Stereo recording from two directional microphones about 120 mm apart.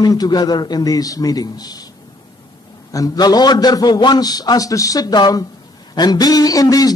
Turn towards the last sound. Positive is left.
turn(degrees=30)  # may be behind; listen again after turning